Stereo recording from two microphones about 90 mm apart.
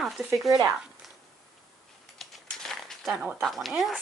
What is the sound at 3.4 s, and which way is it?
Speech, centre (ahead or behind).